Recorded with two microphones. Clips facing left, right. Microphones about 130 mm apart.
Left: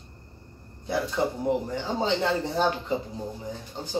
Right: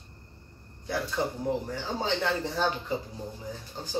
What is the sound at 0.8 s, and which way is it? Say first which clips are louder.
Speech: left 4 dB; 20° left (ahead or behind).